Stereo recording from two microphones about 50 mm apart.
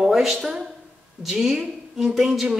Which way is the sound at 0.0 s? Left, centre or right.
Centre.